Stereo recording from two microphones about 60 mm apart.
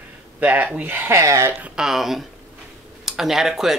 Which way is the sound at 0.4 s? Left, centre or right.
Right.